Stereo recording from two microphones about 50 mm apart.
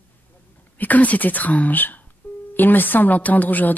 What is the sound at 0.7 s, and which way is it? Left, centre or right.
Speech, left.